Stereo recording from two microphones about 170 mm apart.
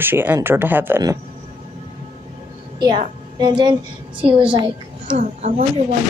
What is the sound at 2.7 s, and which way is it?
A woman's voice, 25° right (ahead or behind).